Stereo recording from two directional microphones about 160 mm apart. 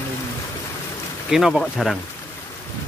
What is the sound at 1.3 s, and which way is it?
Speech, centre (ahead or behind).